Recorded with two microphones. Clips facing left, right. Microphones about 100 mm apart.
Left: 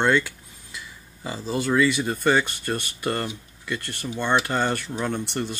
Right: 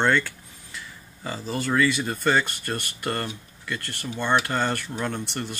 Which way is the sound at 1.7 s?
20° left (ahead or behind).